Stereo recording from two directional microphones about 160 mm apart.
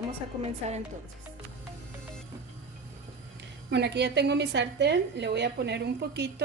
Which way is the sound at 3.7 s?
90° right.